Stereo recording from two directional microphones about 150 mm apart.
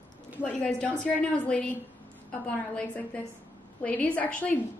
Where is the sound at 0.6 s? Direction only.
5° left (ahead or behind).